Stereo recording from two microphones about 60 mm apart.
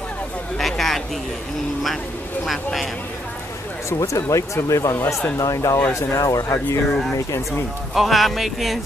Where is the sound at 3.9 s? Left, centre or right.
Left.